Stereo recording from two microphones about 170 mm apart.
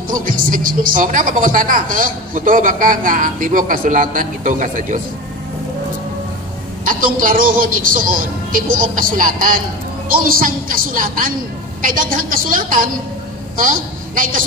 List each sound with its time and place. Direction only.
0.1 s a woman's voice: 55° right (ahead or behind)
6.8 s a man's voice: 55° right (ahead or behind)